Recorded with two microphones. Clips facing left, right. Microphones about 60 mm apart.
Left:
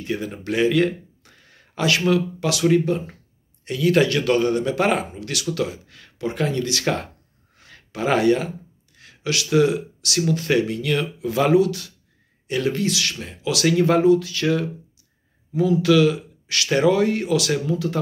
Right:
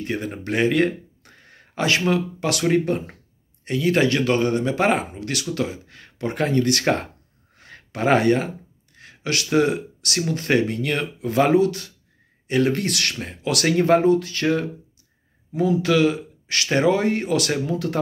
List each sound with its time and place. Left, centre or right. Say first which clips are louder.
0.0 s speech: even; right
2.8 s speech: left 1 dB; right
3.6 s speech: left 1 dB; right
6.1 s speech: right 2 dB; right
6.8 s speech: right 2 dB; right
7.5 s a sound: right 1 dB; right
8.9 s speech: even; right
12.7 s speech: left 1 dB; right